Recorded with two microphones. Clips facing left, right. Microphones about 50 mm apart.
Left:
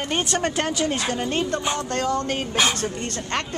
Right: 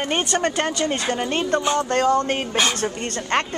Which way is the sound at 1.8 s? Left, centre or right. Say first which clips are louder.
Right 5 dB; right.